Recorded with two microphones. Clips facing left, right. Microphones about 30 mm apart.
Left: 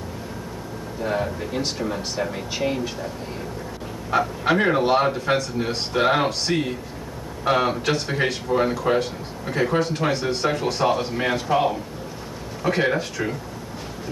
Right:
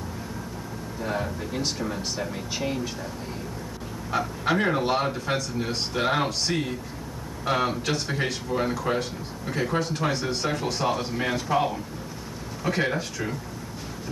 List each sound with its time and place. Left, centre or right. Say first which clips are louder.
1.0 s speech: left 5 dB; left
4.1 s speech: left 5 dB; left